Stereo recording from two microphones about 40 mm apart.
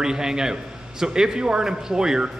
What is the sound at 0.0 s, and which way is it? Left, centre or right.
A man's voice, centre.